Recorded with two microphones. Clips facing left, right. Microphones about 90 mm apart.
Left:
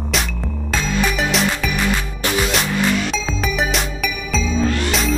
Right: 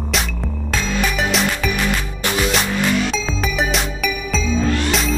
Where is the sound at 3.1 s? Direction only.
Centre (ahead or behind).